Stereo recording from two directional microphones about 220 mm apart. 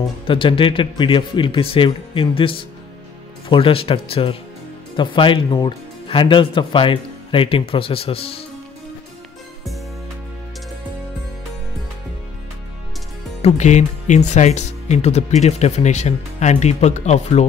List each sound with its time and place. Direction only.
0.3 s speech: 25° left (ahead or behind)
13.4 s speech: 30° left (ahead or behind)